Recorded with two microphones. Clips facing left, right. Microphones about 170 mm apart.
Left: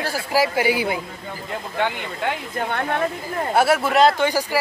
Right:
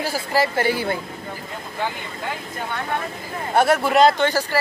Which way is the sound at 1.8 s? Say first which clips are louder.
Left 4 dB; 70° left (ahead or behind).